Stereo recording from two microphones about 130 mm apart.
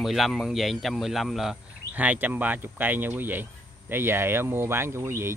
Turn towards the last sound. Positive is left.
turn(degrees=-20)  # may be behind; listen again after turning